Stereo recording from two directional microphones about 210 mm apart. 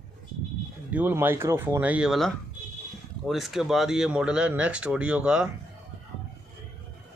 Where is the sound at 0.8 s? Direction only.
10° right (ahead or behind).